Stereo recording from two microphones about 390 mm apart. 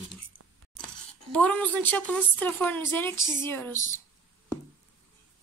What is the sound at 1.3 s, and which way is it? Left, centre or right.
Speech, centre.